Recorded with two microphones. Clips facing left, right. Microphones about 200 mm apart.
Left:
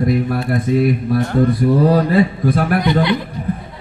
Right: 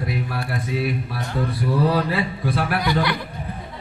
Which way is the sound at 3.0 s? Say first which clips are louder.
Left 7 dB; 20° left (ahead or behind).